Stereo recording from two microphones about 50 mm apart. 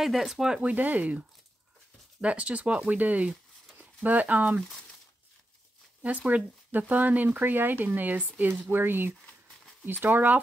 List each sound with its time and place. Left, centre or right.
0.0 s speech: centre
0.6 s speech: right
2.2 s speech: right
6.2 s speech: right